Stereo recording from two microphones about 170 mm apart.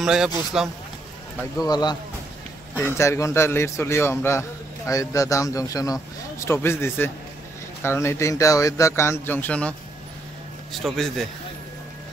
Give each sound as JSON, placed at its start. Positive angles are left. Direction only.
{"t": 0.0, "sound": "speech", "side_deg": -5}
{"t": 1.6, "sound": "a man's voice", "side_deg": 25}